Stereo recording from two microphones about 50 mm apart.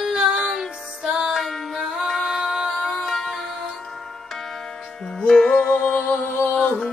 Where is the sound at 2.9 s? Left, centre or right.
Centre.